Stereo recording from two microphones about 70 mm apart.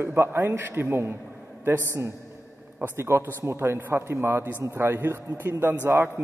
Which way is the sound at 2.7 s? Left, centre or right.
Right.